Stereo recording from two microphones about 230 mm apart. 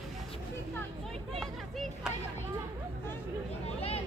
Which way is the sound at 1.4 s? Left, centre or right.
Centre.